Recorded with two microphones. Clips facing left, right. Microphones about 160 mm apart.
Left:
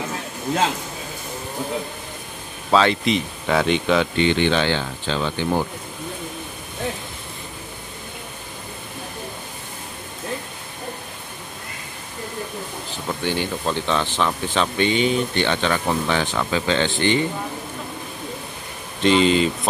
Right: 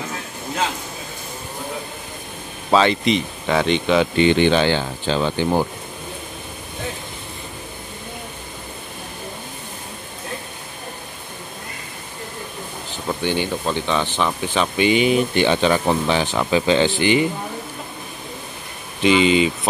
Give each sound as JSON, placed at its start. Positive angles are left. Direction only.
{"t": 2.7, "sound": "speech", "side_deg": 0}
{"t": 13.0, "sound": "speech", "side_deg": -5}
{"t": 18.9, "sound": "speech", "side_deg": -5}